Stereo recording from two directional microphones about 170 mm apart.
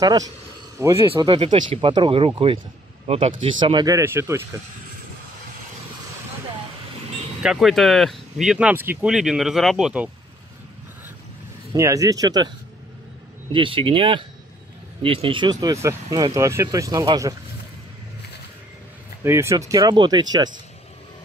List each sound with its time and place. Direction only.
0.7 s speech: 15° right (ahead or behind)
1.1 s speech: 30° right (ahead or behind)
7.4 s speech: centre (ahead or behind)
11.7 s speech: 20° right (ahead or behind)
19.2 s speech: 15° right (ahead or behind)